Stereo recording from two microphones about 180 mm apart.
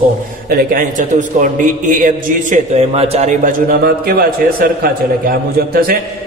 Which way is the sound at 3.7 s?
55° right (ahead or behind).